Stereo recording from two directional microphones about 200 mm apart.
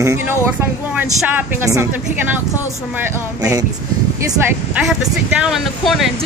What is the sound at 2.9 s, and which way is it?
Speech, 10° right (ahead or behind).